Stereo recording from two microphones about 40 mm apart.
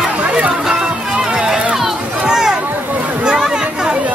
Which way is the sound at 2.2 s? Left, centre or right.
Centre.